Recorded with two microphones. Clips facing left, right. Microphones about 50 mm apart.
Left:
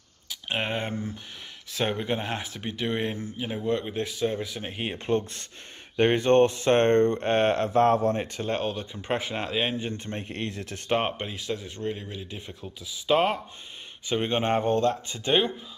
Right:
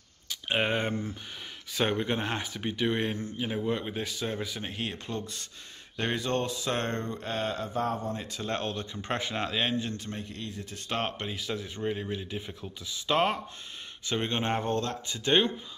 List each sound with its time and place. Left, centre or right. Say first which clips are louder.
0.3 s a sound: right 1 dB; centre
1.7 s speech: left 1 dB; centre
4.7 s speech: left 10 dB; left
8.5 s speech: left 1 dB; centre
9.8 s speech: left 2 dB; left
10.2 s speech: left 6 dB; left
10.9 s speech: left 6 dB; centre
11.2 s speech: left 2 dB; centre
14.0 s speech: left 4 dB; centre